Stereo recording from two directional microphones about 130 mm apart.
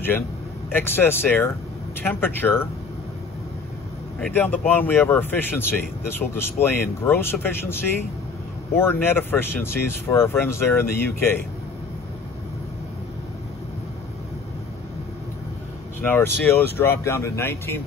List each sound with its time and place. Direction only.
0.7 s speech: 15° left (ahead or behind)
4.2 s speech: 15° left (ahead or behind)
9.0 s speech: 15° left (ahead or behind)
16.1 s speech: 15° left (ahead or behind)